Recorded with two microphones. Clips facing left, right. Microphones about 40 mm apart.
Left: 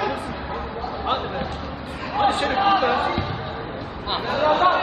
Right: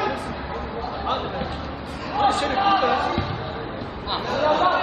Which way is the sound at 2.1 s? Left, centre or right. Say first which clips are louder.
Even; centre.